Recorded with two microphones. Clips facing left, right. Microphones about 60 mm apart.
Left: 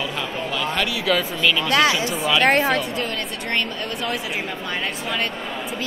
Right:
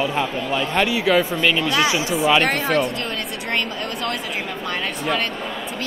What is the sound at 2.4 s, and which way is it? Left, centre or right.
Speech, left.